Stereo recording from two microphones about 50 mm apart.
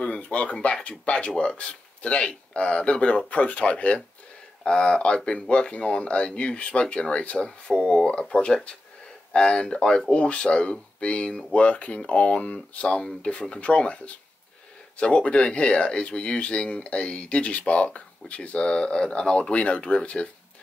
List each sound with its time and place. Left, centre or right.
0.0 s speech: left